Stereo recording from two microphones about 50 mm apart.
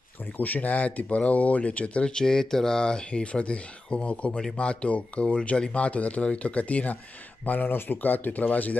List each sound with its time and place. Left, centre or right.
0.4 s speech: left
2.0 s speech: centre; by 8.7 s left